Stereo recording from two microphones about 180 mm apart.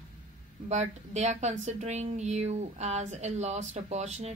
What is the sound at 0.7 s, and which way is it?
Speech, 40° right (ahead or behind).